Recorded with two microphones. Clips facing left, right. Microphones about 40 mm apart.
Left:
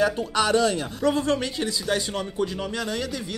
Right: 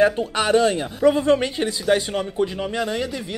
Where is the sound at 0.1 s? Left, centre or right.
Right.